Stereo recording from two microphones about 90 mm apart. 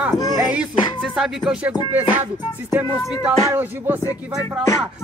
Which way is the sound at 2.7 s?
15° right (ahead or behind).